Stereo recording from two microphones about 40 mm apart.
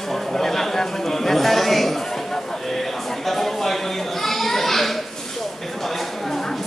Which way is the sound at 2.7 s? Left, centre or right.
Centre.